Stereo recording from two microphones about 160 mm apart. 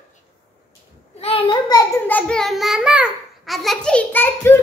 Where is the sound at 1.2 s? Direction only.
30° left (ahead or behind).